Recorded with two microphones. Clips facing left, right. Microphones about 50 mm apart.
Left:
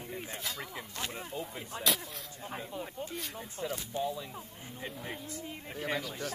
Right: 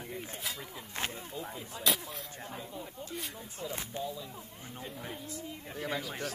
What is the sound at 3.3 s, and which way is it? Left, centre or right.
Speech, left.